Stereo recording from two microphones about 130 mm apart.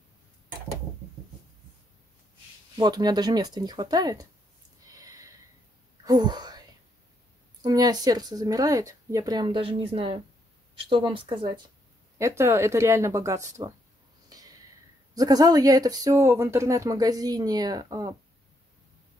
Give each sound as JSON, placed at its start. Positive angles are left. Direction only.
{"t": 2.8, "sound": "speech", "side_deg": -30}
{"t": 4.8, "sound": "a sound", "side_deg": -25}
{"t": 6.0, "sound": "speech", "side_deg": -35}
{"t": 7.6, "sound": "speech", "side_deg": -30}
{"t": 12.2, "sound": "speech", "side_deg": -20}
{"t": 15.1, "sound": "speech", "side_deg": -30}